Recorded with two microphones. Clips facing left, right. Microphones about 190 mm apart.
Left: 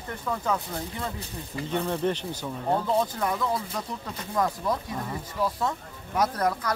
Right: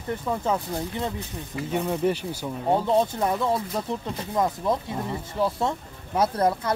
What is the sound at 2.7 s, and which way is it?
Speech, 25° right (ahead or behind).